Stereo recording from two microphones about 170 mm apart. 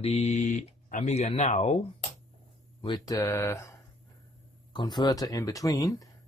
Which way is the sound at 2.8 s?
25° left (ahead or behind).